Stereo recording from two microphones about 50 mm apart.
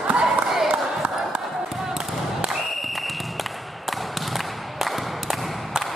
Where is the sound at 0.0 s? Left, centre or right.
Right.